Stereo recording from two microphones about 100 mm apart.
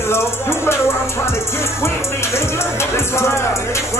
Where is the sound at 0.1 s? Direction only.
25° left (ahead or behind).